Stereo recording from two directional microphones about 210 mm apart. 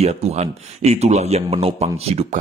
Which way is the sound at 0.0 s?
30° right (ahead or behind).